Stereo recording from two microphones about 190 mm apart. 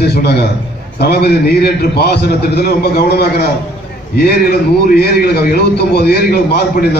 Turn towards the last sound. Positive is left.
turn(degrees=55)  # may be behind; listen again after turning